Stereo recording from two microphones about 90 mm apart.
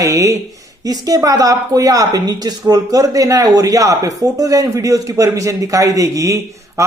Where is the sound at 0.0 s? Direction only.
35° right (ahead or behind).